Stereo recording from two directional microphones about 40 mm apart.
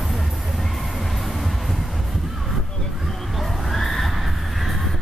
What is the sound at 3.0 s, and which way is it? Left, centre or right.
Neigh, centre.